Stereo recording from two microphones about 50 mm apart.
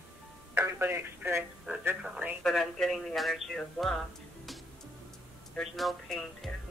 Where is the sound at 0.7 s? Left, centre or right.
Right.